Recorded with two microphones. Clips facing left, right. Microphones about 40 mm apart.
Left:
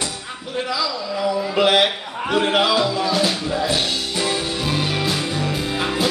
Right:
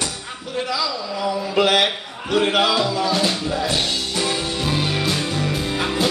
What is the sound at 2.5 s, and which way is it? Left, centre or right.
Music, centre.